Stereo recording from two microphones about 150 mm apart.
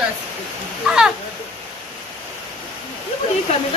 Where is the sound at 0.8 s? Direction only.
5° right (ahead or behind).